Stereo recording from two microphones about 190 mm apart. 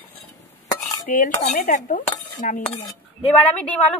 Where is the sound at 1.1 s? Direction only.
40° left (ahead or behind).